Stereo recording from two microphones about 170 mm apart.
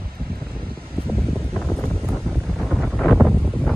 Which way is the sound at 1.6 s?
5° left (ahead or behind).